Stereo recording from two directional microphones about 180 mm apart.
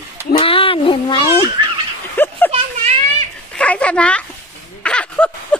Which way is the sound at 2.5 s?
35° right (ahead or behind).